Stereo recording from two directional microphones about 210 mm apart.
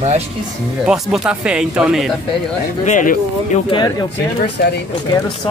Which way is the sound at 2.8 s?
40° left (ahead or behind).